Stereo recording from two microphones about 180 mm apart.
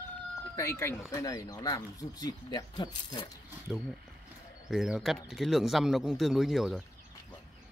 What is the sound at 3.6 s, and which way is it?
Speech, 5° right (ahead or behind).